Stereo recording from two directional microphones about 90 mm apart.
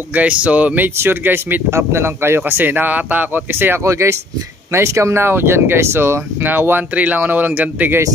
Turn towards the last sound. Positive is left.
turn(degrees=-20)  # may be behind; listen again after turning